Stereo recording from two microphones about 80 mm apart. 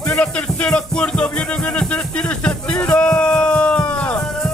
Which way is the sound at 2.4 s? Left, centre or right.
Centre.